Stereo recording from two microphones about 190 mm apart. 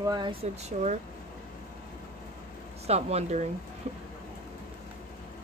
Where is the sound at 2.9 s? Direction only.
35° right (ahead or behind).